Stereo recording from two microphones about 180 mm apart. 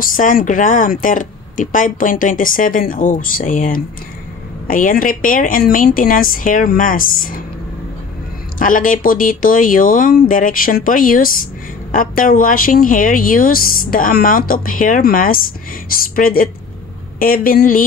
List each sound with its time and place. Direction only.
0.0 s speech: 50° left (ahead or behind)
8.5 s speech: 50° left (ahead or behind)